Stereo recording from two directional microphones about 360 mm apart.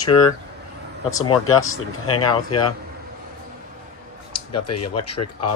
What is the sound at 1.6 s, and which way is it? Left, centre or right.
Speech, left.